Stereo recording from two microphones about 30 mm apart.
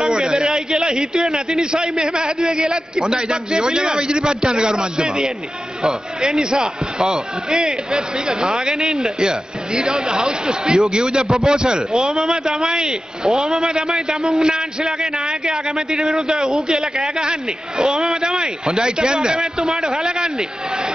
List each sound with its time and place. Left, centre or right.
0.0 s a sound: right
1.6 s a man's voice: right
8.7 s a man's voice: centre
9.2 s a man's voice: right
11.9 s a man's voice: centre
12.5 s a man's voice: right
13.3 s a man's voice: centre
14.4 s a man's voice: right
15.7 s a man's voice: centre
16.6 s a man's voice: right